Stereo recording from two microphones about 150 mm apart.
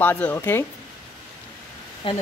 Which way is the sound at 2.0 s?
35° left (ahead or behind).